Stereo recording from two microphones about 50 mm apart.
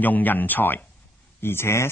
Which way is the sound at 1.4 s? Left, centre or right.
Left.